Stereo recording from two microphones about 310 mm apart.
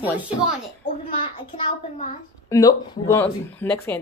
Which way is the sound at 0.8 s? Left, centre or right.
Centre.